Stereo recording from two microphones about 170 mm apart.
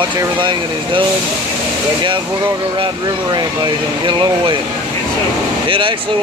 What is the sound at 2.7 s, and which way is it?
Speech, 25° right (ahead or behind).